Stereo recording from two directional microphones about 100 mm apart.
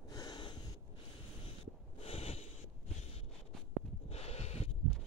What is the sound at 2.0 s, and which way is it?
Snort, 85° left.